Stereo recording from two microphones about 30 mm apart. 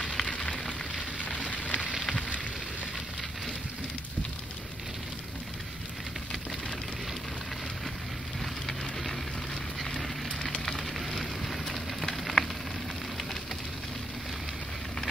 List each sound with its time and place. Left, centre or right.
0.0 s a sound: left
1.5 s fire: left
9.8 s fire: centre
10.9 s fire: centre